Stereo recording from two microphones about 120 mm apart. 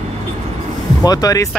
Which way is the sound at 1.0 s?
30° left (ahead or behind).